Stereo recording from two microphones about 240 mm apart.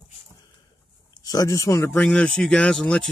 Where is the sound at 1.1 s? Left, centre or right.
Centre.